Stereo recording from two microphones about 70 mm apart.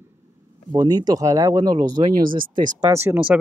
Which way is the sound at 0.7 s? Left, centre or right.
Right.